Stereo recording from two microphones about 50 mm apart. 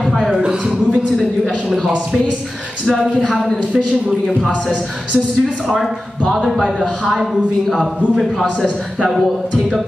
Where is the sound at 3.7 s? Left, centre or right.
Centre.